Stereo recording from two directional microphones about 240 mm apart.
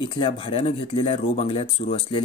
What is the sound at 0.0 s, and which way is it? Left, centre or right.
Speech, centre.